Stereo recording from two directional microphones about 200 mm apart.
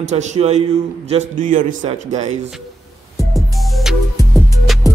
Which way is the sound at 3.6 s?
Centre (ahead or behind).